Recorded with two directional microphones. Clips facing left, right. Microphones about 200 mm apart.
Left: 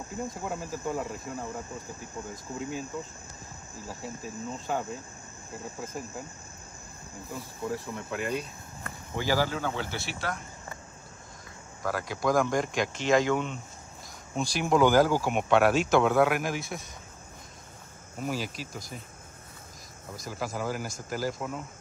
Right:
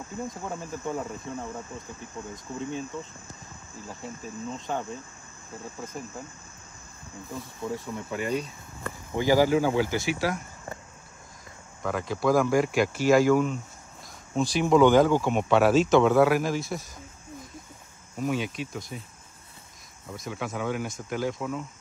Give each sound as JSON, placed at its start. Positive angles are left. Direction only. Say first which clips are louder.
{"t": 0.4, "sound": "cricket", "louder": "even", "side_deg": 5}
{"t": 2.6, "sound": "speech", "louder": "right 2 dB", "side_deg": 5}
{"t": 3.8, "sound": "cricket", "louder": "even", "side_deg": 5}
{"t": 7.3, "sound": "speech", "louder": "right 1 dB", "side_deg": 0}
{"t": 9.1, "sound": "speech", "louder": "right 7 dB", "side_deg": -15}
{"t": 11.8, "sound": "speech", "louder": "right 3 dB", "side_deg": 0}
{"t": 18.2, "sound": "speech", "louder": "right 4 dB", "side_deg": 0}
{"t": 20.1, "sound": "speech", "louder": "right 2 dB", "side_deg": 0}